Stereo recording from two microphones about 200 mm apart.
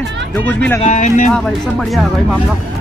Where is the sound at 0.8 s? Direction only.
35° left (ahead or behind).